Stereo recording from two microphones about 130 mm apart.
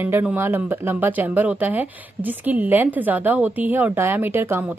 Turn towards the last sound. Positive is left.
turn(degrees=-15)  # may be behind; listen again after turning